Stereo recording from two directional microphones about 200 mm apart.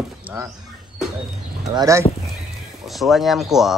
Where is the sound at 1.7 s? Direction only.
15° right (ahead or behind).